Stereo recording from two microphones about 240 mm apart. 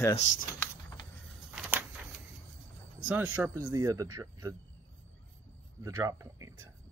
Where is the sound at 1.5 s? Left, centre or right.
Centre.